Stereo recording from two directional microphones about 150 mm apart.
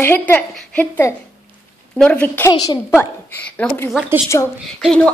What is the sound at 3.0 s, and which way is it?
A woman's voice, 10° left (ahead or behind).